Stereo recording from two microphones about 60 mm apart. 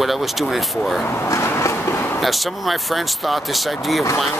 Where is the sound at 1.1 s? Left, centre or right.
Left.